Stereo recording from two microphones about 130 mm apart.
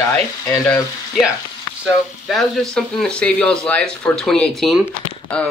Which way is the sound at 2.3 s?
Centre (ahead or behind).